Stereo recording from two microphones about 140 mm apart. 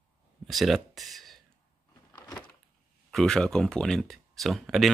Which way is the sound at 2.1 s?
25° left (ahead or behind).